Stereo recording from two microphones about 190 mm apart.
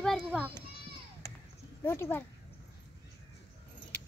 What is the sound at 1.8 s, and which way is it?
Speech, 10° left (ahead or behind).